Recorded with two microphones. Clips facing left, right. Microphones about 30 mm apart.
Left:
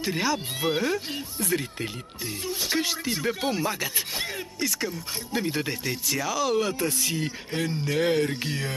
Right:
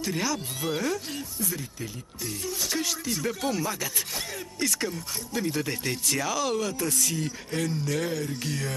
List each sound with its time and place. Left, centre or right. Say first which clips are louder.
0.0 s speech: left 3 dB; left
1.4 s speech: left 9 dB; left
2.2 s speech: left 2 dB; left
4.6 s speech: right 1 dB; centre
5.3 s speech: left 1 dB; left
5.7 s speech: even; centre
6.5 s speech: left 3 dB; left
8.1 s speech: left 7 dB; left
8.4 s speech: left 1 dB; left